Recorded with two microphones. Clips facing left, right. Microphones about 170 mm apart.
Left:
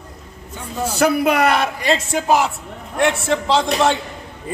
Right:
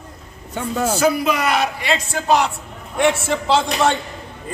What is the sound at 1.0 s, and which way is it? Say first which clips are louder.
Speech: left 5 dB; 60° left (ahead or behind).